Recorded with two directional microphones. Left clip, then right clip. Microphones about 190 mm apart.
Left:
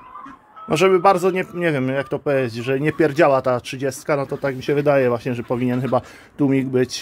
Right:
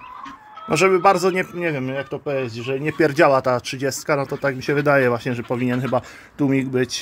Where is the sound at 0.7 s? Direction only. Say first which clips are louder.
Left 1 dB; centre (ahead or behind).